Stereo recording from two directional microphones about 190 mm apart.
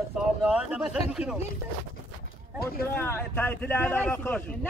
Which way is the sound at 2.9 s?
10° left (ahead or behind).